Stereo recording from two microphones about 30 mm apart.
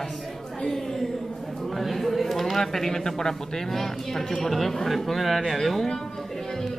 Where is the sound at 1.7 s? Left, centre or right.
Centre.